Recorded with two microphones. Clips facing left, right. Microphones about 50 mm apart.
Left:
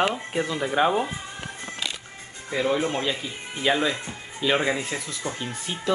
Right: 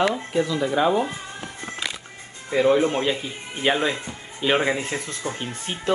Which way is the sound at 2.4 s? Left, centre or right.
Centre.